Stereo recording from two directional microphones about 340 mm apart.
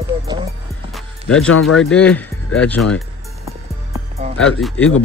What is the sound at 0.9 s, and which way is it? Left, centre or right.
Music, centre.